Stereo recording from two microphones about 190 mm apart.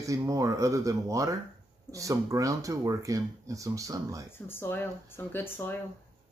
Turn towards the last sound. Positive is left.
turn(degrees=10)  # may be behind; listen again after turning